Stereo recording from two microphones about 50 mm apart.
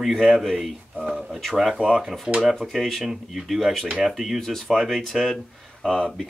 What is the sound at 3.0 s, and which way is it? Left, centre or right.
Speech, centre.